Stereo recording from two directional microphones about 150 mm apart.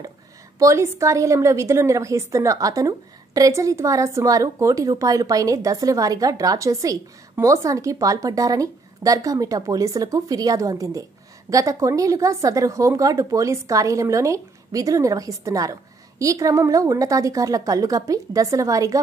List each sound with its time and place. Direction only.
0.6 s a woman's voice: 20° right (ahead or behind)